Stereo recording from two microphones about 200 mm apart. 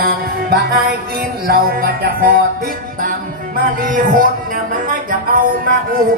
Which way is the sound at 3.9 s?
40° right (ahead or behind).